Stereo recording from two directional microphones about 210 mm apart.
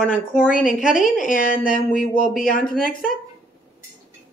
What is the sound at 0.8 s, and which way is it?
A woman's voice, 40° left (ahead or behind).